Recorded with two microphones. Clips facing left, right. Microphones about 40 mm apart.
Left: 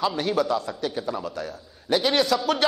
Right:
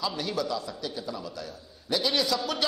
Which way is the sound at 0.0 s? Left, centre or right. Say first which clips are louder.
Left 7 dB; left.